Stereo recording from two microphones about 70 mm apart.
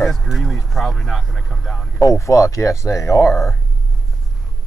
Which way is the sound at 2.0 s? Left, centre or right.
Left.